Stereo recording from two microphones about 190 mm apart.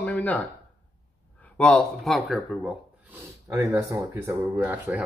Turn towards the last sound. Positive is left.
turn(degrees=-10)  # may be behind; listen again after turning